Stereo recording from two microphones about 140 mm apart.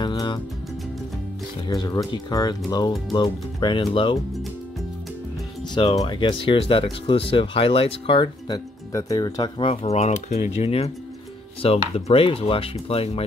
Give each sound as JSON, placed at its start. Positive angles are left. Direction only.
{"t": 0.0, "sound": "music", "side_deg": 35}
{"t": 1.7, "sound": "speech", "side_deg": 25}
{"t": 5.9, "sound": "speech", "side_deg": 35}
{"t": 8.9, "sound": "speech", "side_deg": 25}